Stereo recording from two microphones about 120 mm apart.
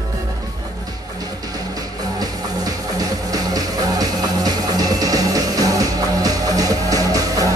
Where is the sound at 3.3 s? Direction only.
30° right (ahead or behind).